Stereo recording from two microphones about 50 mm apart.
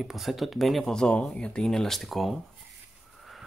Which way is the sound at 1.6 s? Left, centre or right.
Centre.